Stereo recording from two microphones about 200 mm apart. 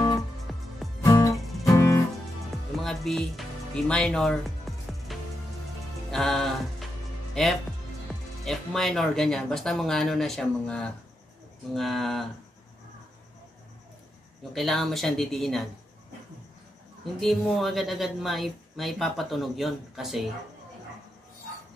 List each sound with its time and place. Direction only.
0.5 s music: centre (ahead or behind)
1.0 s music: 15° left (ahead or behind)
2.7 s music: centre (ahead or behind)
6.1 s music: centre (ahead or behind)
7.4 s speech: centre (ahead or behind)
8.1 s music: centre (ahead or behind)
8.5 s speech: centre (ahead or behind)
14.5 s speech: centre (ahead or behind)
17.0 s speech: centre (ahead or behind)